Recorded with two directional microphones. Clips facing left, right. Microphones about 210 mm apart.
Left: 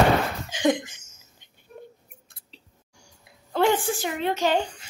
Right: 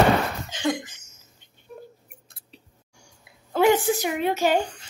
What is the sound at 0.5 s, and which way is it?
Cough, 15° left (ahead or behind).